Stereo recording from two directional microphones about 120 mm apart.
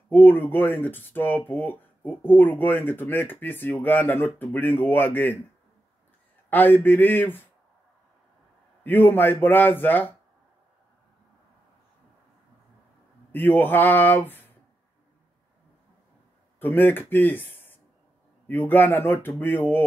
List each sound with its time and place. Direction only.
0.1 s speech: 15° left (ahead or behind)
6.5 s speech: 15° left (ahead or behind)
8.8 s speech: 15° left (ahead or behind)
13.3 s speech: 15° left (ahead or behind)
16.5 s speech: 15° left (ahead or behind)